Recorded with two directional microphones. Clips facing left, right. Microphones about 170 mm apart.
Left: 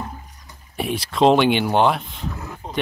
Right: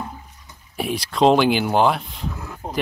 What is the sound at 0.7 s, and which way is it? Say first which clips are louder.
Speech: even; centre (ahead or behind).